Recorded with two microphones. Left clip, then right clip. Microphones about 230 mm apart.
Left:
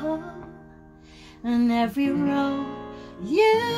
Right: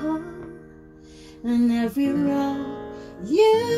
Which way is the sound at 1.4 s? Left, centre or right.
Left.